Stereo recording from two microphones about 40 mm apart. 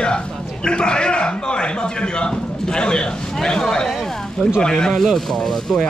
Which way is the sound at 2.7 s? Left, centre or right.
Left.